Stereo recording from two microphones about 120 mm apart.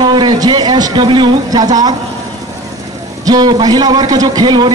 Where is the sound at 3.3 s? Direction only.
35° right (ahead or behind).